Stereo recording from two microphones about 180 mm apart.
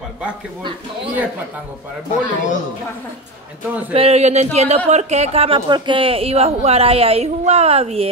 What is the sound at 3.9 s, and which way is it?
Speech, 35° right (ahead or behind).